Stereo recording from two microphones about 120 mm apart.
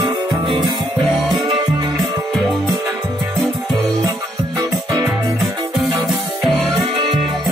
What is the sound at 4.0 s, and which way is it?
Music, 25° right (ahead or behind).